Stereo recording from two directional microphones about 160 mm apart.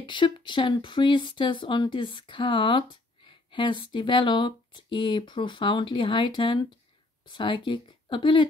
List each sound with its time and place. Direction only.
0.0 s speech: 30° left (ahead or behind)